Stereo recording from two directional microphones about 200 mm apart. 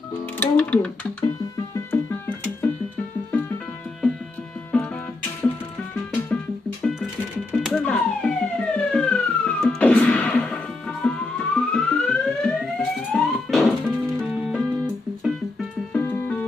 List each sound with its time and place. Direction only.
0.1 s speech: 10° left (ahead or behind)
1.9 s music: 10° left (ahead or behind)
4.7 s music: 5° left (ahead or behind)
6.3 s music: centre (ahead or behind)
15.9 s music: 10° left (ahead or behind)